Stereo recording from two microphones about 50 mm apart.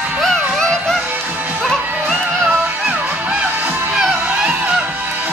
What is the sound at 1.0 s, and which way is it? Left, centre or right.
Music, right.